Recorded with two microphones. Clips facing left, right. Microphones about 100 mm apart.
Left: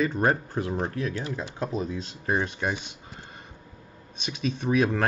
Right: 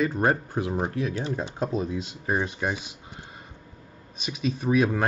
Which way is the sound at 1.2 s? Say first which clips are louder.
Right 3 dB; 25° right (ahead or behind).